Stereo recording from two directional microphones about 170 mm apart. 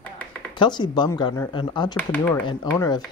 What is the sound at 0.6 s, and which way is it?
Speech, 25° left (ahead or behind).